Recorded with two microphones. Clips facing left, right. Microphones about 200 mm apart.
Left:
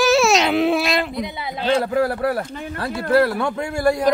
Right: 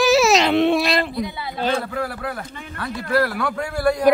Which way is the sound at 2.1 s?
40° left (ahead or behind).